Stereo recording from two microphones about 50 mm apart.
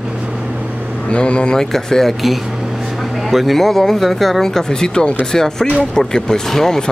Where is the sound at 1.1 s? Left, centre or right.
Left.